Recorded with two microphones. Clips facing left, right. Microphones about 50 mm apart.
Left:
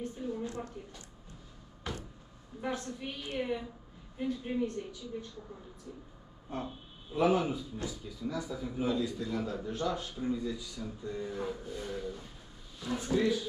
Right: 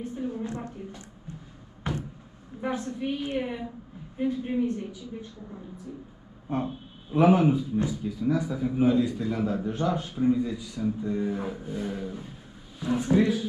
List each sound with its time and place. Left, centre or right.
0.0 s a sound: centre
2.6 s speech: centre
6.5 s a man's voice: right